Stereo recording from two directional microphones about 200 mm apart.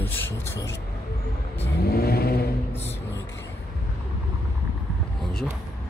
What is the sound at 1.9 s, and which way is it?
Vehicle, 50° left (ahead or behind).